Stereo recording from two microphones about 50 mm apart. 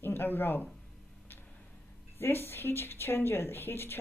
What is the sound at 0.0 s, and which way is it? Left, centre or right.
Speech, left.